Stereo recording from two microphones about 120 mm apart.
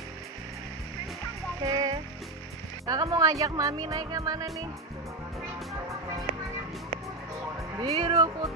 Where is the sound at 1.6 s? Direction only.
30° right (ahead or behind).